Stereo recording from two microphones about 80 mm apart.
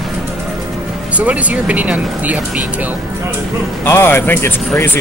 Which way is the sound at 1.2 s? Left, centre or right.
Centre.